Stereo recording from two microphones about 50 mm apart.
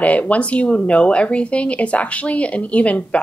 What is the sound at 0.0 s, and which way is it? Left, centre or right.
Speech, left.